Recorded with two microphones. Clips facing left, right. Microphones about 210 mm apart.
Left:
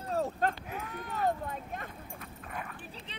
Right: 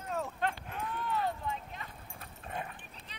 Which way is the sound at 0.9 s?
45° left (ahead or behind).